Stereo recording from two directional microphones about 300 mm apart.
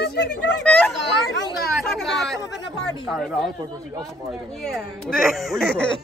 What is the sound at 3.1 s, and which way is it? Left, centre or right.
Speech, centre.